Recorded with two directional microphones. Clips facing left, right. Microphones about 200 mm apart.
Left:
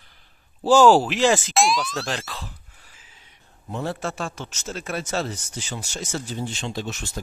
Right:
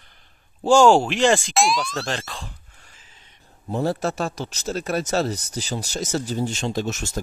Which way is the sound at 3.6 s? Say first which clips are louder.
Right 5 dB; 35° right (ahead or behind).